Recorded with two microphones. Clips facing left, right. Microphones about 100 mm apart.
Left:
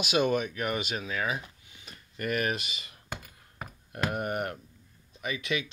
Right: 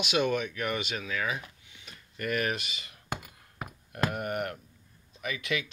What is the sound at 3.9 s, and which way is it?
Speech, 25° left (ahead or behind).